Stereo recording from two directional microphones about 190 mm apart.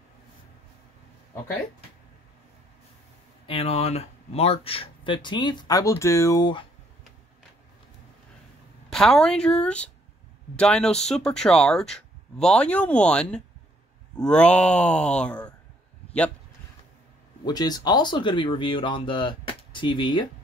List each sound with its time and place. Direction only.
3.4 s speech: 30° left (ahead or behind)
8.9 s speech: 5° left (ahead or behind)
17.5 s speech: 20° left (ahead or behind)